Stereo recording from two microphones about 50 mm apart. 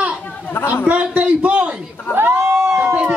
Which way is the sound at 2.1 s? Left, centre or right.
Right.